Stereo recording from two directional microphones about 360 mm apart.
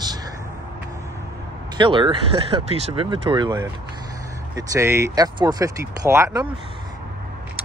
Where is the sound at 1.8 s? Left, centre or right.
Centre.